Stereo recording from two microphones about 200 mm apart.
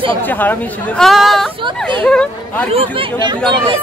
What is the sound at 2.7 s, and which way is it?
Speech, 25° right (ahead or behind).